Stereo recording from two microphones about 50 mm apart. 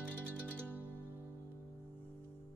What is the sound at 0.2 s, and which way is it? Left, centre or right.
Zither, left.